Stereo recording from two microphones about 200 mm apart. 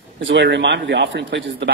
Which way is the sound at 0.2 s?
65° right (ahead or behind).